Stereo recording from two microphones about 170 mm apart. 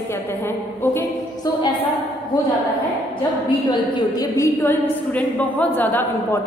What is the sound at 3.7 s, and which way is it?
A woman's voice, 25° left (ahead or behind).